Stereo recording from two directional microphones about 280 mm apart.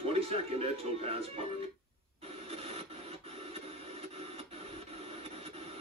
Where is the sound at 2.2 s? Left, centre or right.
Right.